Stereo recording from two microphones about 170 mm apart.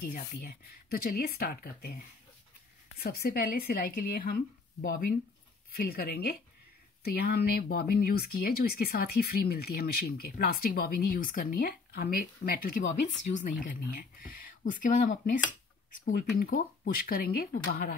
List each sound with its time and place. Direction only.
0.1 s speech: 60° left (ahead or behind)
5.8 s speech: 65° left (ahead or behind)
13.2 s speech: 50° left (ahead or behind); by 17.9 s 65° left (ahead or behind)